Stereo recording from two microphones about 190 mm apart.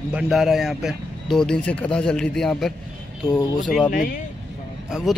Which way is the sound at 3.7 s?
Centre (ahead or behind).